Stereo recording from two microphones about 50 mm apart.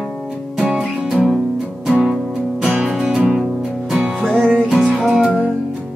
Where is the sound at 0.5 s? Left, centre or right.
Centre.